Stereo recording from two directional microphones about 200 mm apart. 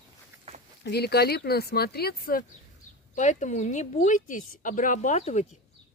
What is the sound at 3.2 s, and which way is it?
A woman's voice, 35° left (ahead or behind).